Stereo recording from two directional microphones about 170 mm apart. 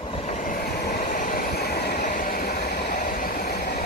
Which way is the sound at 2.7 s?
50° left (ahead or behind).